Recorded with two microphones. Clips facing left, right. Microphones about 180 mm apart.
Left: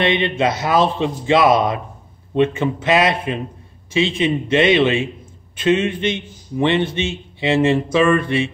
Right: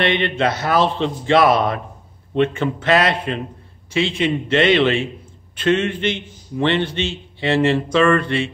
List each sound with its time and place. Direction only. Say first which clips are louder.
0.0 s a man's voice: left 1 dB; 15° left (ahead or behind)